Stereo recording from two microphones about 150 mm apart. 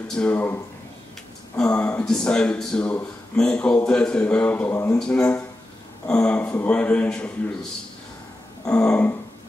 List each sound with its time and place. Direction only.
0.1 s a man's voice: 10° left (ahead or behind)
1.6 s a man's voice: 10° left (ahead or behind)
8.6 s a man's voice: 10° left (ahead or behind)